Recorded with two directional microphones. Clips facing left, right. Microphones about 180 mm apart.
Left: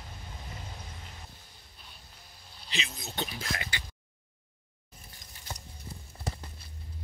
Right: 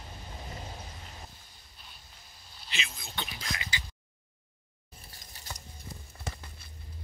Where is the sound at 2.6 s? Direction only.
35° left (ahead or behind); by 3.8 s 55° left (ahead or behind).